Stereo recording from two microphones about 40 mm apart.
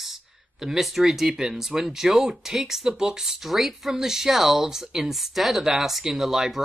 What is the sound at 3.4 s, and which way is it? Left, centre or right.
Speech, centre.